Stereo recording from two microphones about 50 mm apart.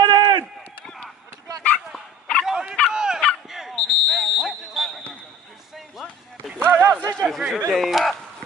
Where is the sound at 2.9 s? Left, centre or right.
Centre.